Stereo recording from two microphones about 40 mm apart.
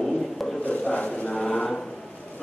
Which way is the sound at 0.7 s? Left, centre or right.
Left.